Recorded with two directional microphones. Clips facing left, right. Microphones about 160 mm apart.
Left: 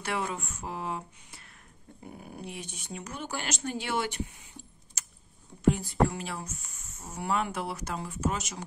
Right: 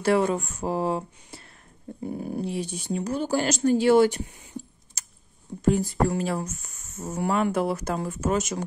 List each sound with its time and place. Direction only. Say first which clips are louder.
0.0 s speech: right 11 dB; 40° right (ahead or behind)
5.0 s typing: even; 35° right (ahead or behind)
5.6 s speech: right 3 dB; 40° right (ahead or behind)